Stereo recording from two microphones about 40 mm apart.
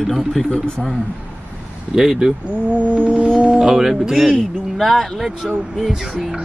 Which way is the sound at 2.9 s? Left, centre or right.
Right.